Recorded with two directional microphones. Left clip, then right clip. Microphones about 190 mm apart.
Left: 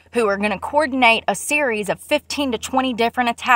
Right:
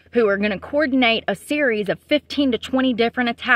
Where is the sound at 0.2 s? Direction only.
50° right (ahead or behind).